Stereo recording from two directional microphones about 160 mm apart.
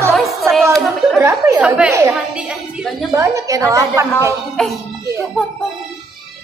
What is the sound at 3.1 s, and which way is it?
Speech, 20° right (ahead or behind).